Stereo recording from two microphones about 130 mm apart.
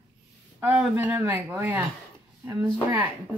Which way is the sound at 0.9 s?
15° right (ahead or behind).